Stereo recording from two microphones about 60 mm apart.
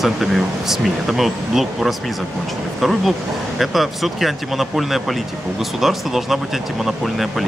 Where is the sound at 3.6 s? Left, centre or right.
Centre.